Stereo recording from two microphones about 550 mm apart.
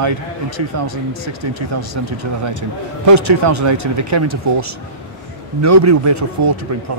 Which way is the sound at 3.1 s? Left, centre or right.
Right.